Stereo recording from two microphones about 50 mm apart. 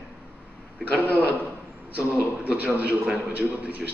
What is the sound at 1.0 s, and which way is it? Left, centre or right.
Speech, left.